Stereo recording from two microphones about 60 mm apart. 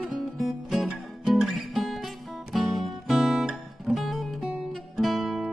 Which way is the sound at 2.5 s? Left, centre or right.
Centre.